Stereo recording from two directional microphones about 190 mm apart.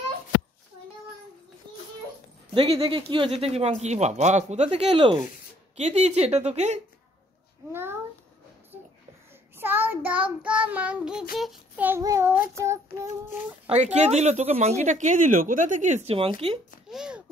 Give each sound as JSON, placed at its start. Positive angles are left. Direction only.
{"t": 2.5, "sound": "speech", "side_deg": -30}
{"t": 7.7, "sound": "a child's voice", "side_deg": -10}
{"t": 9.6, "sound": "child singing", "side_deg": -10}
{"t": 11.9, "sound": "child singing", "side_deg": -15}
{"t": 13.9, "sound": "speech", "side_deg": -35}
{"t": 16.9, "sound": "a child's voice", "side_deg": -5}